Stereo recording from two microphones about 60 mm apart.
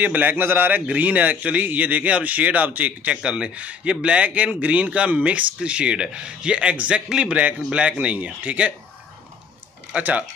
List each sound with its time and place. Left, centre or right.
0.0 s a man's voice: right
3.2 s a man's voice: centre
9.9 s a man's voice: right